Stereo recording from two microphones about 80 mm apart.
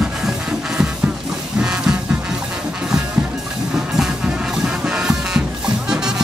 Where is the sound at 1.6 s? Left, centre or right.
Centre.